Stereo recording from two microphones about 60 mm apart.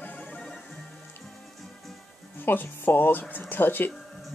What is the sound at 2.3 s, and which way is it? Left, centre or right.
Speech, left.